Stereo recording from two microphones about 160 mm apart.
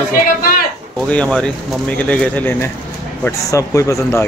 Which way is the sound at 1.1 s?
5° left (ahead or behind).